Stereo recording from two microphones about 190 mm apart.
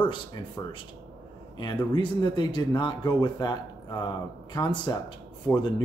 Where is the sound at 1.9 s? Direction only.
25° left (ahead or behind).